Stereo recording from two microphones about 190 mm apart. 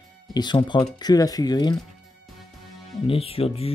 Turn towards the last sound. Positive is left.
turn(degrees=30)  # may be behind; listen again after turning